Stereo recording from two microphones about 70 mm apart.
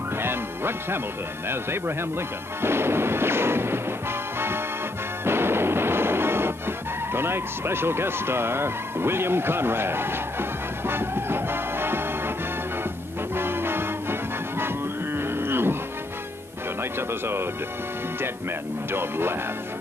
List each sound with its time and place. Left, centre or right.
0.2 s music: right
1.5 s speech: right
5.2 s music: right
7.2 s speech: right
10.9 s music: right
13.4 s music: right
15.1 s a sound: right
18.9 s speech: right